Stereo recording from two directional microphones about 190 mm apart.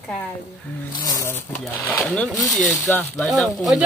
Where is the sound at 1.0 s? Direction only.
20° left (ahead or behind).